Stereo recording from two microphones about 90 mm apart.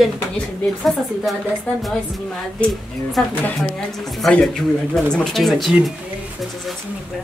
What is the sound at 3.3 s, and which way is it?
Speech, 15° left (ahead or behind).